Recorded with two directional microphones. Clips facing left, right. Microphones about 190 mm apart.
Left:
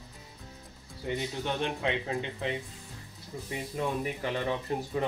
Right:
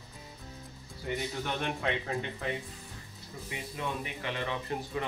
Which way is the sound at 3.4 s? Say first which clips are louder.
Left 4 dB; 40° left (ahead or behind).